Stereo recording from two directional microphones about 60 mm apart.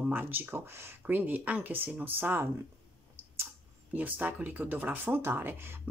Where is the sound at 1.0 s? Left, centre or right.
Right.